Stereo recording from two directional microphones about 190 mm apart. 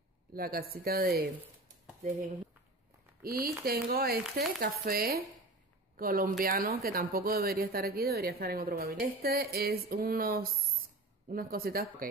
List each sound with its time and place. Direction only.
0.3 s a woman's voice: 50° right (ahead or behind)
3.2 s a woman's voice: 50° right (ahead or behind)